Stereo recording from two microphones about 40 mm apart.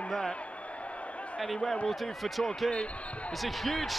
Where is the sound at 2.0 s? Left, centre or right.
Centre.